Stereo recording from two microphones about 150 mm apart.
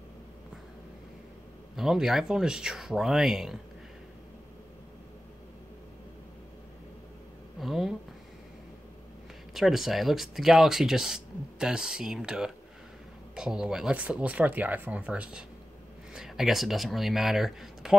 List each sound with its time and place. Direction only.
1.8 s speech: centre (ahead or behind)
7.6 s speech: centre (ahead or behind)
9.5 s speech: centre (ahead or behind)